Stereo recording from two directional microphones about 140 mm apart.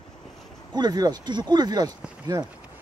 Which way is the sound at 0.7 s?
30° right (ahead or behind).